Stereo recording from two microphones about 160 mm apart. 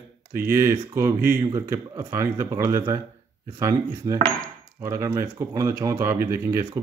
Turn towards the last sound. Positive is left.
turn(degrees=-15)  # may be behind; listen again after turning